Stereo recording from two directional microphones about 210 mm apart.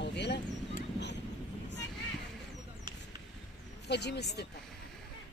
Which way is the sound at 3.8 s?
55° left (ahead or behind).